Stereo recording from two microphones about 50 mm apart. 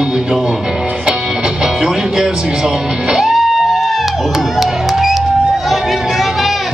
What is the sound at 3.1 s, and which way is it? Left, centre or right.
Music, centre.